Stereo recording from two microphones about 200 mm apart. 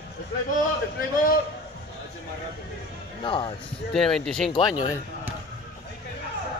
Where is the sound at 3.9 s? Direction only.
Centre (ahead or behind).